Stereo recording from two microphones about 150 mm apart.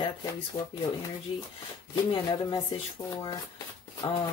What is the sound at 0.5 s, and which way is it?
Speech, 25° left (ahead or behind).